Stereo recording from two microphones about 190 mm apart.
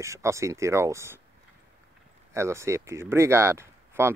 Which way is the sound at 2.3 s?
15° right (ahead or behind).